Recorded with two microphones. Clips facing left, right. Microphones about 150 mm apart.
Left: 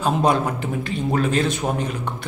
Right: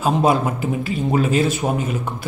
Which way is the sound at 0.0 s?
5° right (ahead or behind).